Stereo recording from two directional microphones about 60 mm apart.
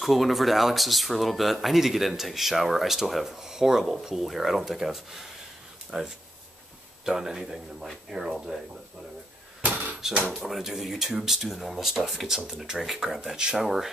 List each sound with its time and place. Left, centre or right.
0.0 s speech: centre
9.6 s a sound: right
10.3 s speech: centre